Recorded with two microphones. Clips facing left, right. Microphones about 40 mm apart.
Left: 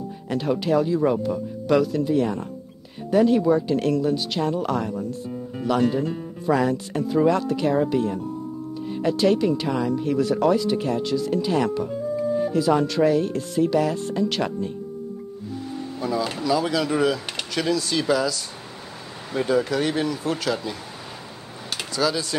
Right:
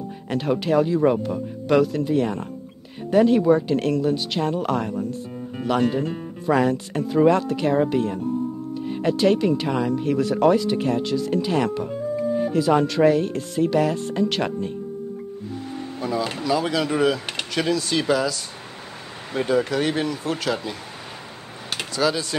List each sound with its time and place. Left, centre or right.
0.3 s speech: right
16.0 s speech: right
21.6 s computer keyboard: right